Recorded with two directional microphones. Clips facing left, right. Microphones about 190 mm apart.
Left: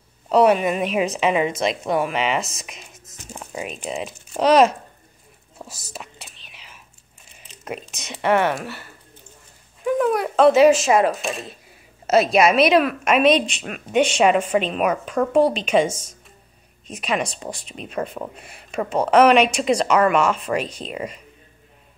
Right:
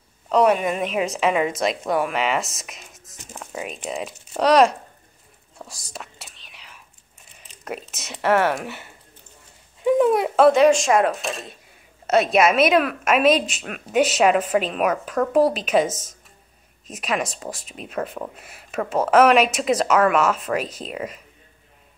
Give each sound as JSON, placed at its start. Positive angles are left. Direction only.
{"t": 0.3, "sound": "speech", "side_deg": 5}
{"t": 5.6, "sound": "whispering", "side_deg": 5}
{"t": 7.6, "sound": "speech", "side_deg": 0}
{"t": 8.6, "sound": "speech", "side_deg": -20}
{"t": 9.8, "sound": "a sound", "side_deg": -25}
{"t": 10.5, "sound": "speech", "side_deg": 5}